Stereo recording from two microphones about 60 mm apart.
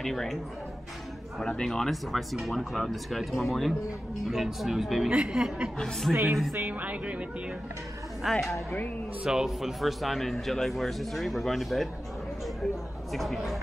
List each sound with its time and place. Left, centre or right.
0.0 s speech: centre
1.6 s speech: centre
5.1 s speech: centre
5.8 s speech: centre
6.5 s speech: right
8.2 s speech: centre
9.2 s speech: centre
13.1 s speech: centre